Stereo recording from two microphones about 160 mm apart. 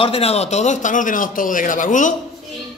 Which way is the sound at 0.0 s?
40° left (ahead or behind).